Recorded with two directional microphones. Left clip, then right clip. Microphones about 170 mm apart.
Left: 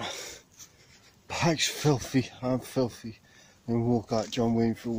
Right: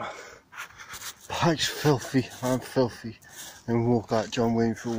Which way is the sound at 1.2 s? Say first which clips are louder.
Right 2 dB; 5° left (ahead or behind).